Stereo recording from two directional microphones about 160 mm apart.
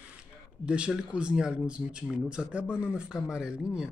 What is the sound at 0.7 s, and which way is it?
Speech, 5° right (ahead or behind).